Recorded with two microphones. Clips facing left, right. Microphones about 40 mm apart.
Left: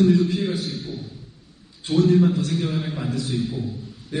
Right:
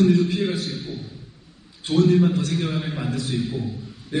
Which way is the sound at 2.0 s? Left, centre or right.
Centre.